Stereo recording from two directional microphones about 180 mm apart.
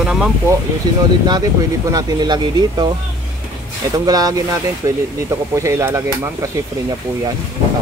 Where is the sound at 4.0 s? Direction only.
20° right (ahead or behind).